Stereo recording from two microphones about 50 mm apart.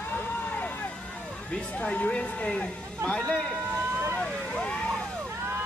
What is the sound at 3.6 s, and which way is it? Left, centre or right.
Vehicle, right.